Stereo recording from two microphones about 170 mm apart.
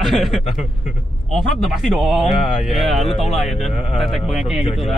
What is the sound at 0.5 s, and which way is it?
Speech, 40° left (ahead or behind).